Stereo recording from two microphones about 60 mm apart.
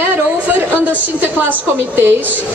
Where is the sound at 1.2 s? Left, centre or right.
Right.